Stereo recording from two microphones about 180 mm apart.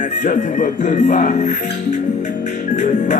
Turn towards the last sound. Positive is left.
turn(degrees=40)  # may be behind; listen again after turning